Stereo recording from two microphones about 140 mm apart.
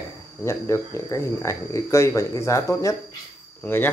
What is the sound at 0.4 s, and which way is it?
Speech, 20° left (ahead or behind).